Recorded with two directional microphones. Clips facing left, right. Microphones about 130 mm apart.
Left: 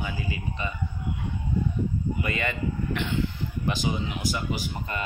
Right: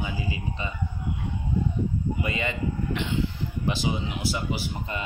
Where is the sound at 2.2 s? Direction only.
25° right (ahead or behind).